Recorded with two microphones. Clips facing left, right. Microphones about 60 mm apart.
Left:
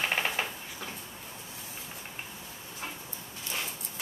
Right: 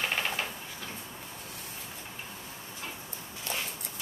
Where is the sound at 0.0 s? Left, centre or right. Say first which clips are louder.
Left 1 dB; centre.